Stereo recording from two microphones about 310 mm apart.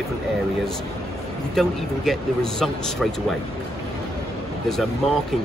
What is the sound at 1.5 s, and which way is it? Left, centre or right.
Speech, centre.